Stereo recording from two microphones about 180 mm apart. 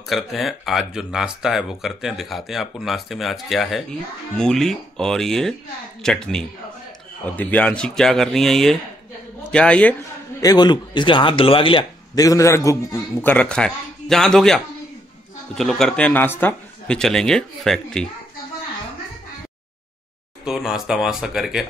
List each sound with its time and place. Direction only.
0.1 s a man's voice: centre (ahead or behind)
10.4 s a man's voice: 20° left (ahead or behind); by 18.0 s 5° left (ahead or behind)
20.4 s speech: centre (ahead or behind)